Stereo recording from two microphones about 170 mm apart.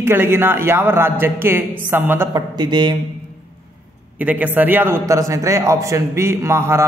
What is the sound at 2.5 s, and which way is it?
Speech, 25° right (ahead or behind).